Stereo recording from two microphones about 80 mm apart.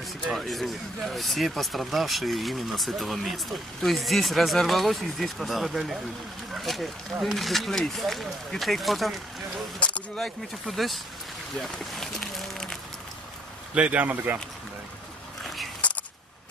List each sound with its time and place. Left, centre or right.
0.3 s speech: centre
9.8 s speech: centre
10.2 s speech: centre
11.5 s a sound: centre
13.7 s speech: centre
15.8 s a sound: centre